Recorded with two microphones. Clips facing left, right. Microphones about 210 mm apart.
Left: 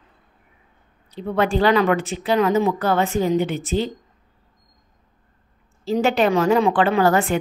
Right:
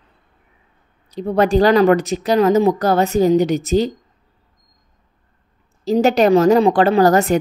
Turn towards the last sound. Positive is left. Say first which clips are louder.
# right 5 dB
turn(degrees=-40)  # may be behind; listen again after turning